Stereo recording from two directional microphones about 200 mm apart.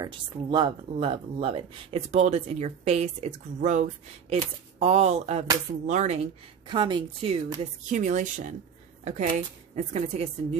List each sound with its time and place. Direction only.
0.0 s speech: 20° right (ahead or behind)
6.7 s a woman's voice: 25° right (ahead or behind)
7.9 s speech: 40° right (ahead or behind)